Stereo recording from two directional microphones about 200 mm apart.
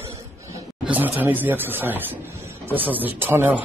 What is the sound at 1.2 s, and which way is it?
Speech, 10° right (ahead or behind).